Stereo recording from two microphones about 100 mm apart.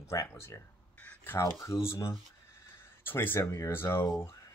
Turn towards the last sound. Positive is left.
turn(degrees=25)  # may be behind; listen again after turning